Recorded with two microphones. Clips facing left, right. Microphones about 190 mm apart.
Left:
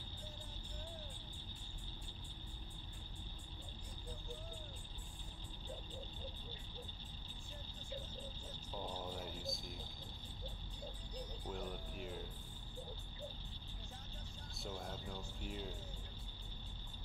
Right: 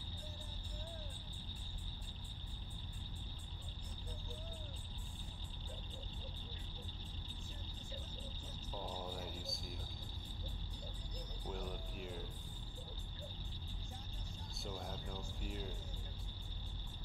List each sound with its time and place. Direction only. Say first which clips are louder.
8.7 s a sound: even; centre (ahead or behind)
11.4 s music: right 1 dB; centre (ahead or behind)
14.6 s speech: even; centre (ahead or behind)